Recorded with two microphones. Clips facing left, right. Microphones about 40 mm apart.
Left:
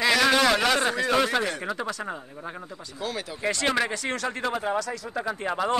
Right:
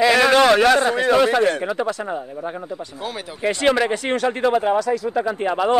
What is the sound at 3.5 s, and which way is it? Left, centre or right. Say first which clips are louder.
Speech: right 8 dB; right.